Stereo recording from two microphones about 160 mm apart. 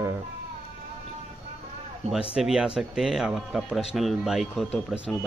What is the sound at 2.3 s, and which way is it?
Speech, 5° right (ahead or behind).